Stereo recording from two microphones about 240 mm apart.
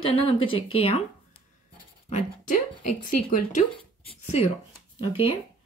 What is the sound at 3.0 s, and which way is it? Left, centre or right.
Speech, left.